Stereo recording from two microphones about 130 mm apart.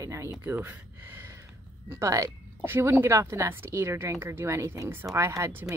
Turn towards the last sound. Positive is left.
turn(degrees=-20)  # may be behind; listen again after turning